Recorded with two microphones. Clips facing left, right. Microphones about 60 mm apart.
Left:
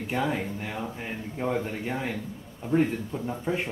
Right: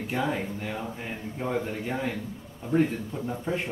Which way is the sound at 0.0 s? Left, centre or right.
Centre.